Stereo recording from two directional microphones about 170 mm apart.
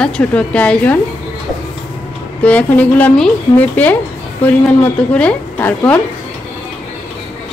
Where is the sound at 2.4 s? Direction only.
10° left (ahead or behind).